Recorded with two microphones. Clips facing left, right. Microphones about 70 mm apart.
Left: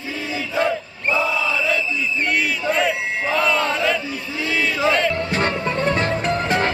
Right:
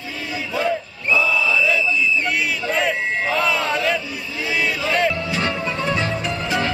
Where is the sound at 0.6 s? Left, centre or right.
Left.